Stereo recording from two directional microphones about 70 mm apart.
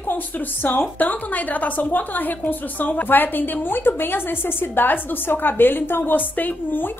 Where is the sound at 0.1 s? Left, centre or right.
Left.